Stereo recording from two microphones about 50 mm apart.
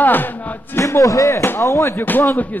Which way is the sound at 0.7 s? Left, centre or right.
Left.